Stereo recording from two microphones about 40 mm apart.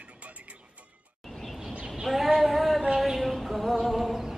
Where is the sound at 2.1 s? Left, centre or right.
Centre.